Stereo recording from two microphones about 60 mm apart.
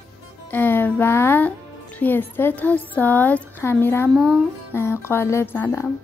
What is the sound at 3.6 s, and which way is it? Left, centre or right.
A woman's voice, left.